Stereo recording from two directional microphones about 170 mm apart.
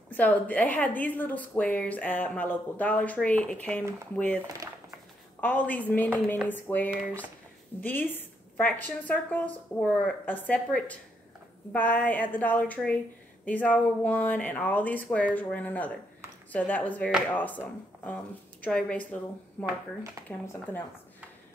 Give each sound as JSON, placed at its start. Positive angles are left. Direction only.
{"t": 0.1, "sound": "speech", "side_deg": 10}
{"t": 4.4, "sound": "speech", "side_deg": -20}
{"t": 5.4, "sound": "speech", "side_deg": 10}
{"t": 20.2, "sound": "speech", "side_deg": -20}